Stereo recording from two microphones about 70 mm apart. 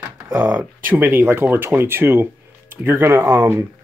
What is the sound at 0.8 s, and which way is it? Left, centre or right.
Speech, right.